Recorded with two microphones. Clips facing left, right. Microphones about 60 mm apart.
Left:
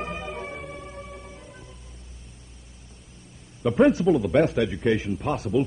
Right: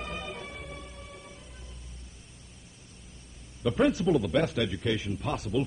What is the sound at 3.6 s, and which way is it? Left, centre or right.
Speech, left.